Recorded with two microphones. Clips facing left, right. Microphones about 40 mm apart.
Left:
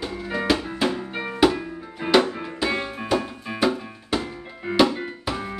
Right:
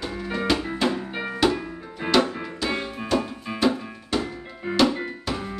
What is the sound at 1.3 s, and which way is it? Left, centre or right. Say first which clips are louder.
Music: left 3 dB; centre.